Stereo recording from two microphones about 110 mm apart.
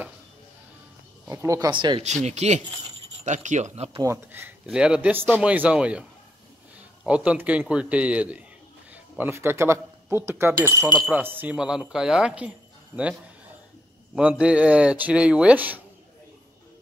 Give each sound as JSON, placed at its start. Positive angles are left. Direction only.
{"t": 1.3, "sound": "speech", "side_deg": -30}
{"t": 1.7, "sound": "speech", "side_deg": -45}
{"t": 2.2, "sound": "speech", "side_deg": -85}
{"t": 4.0, "sound": "speech", "side_deg": -20}
{"t": 4.6, "sound": "speech", "side_deg": -10}
{"t": 7.1, "sound": "speech", "side_deg": -10}
{"t": 14.1, "sound": "speech", "side_deg": -10}